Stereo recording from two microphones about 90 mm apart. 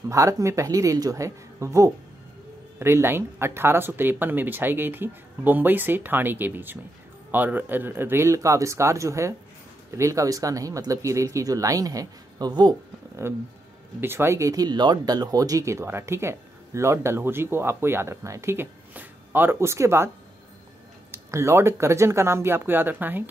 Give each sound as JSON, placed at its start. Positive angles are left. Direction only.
{"t": 0.1, "sound": "speech", "side_deg": -35}
{"t": 13.2, "sound": "speech", "side_deg": -25}
{"t": 14.5, "sound": "speech", "side_deg": -50}
{"t": 21.1, "sound": "speech", "side_deg": -30}